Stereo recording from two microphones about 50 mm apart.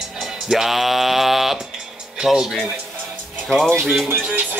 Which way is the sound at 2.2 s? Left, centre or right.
Centre.